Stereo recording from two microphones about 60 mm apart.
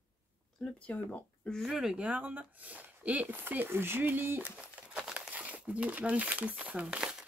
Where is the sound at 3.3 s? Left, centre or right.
Right.